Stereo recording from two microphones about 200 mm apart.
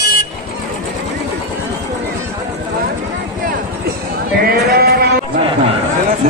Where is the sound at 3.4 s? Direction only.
45° right (ahead or behind).